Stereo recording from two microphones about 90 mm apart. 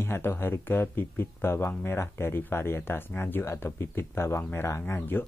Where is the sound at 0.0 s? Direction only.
25° left (ahead or behind).